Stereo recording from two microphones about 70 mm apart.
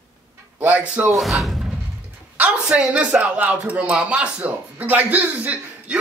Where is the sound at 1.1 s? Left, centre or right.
Centre.